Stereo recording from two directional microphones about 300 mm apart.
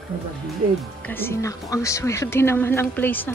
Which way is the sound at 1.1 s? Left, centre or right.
Centre.